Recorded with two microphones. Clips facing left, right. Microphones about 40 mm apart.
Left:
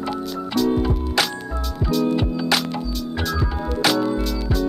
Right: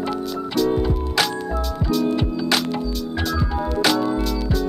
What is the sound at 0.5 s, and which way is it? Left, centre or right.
Music, centre.